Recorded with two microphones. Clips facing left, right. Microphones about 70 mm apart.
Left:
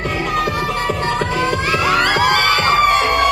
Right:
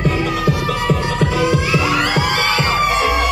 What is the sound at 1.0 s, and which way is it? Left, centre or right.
Music, left.